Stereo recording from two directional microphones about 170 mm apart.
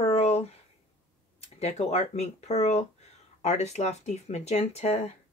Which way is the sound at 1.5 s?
40° left (ahead or behind).